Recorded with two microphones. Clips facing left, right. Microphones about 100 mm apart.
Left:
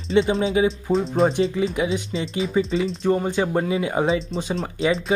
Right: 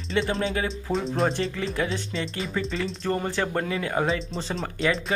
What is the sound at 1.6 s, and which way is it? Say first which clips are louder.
Speech: left 5 dB; 15° left (ahead or behind).